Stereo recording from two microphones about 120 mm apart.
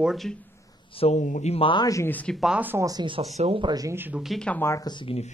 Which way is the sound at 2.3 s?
5° right (ahead or behind).